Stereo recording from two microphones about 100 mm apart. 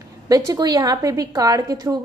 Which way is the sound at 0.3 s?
40° right (ahead or behind).